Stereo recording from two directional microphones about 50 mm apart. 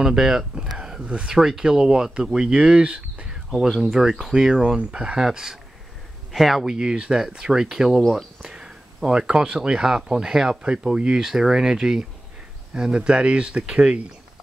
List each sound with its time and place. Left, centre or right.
0.0 s speech: centre
3.5 s speech: centre